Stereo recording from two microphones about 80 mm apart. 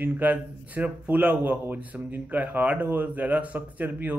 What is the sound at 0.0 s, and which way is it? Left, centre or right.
Speech, right.